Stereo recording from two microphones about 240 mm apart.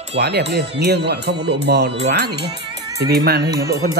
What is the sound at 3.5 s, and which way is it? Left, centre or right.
Speech, centre.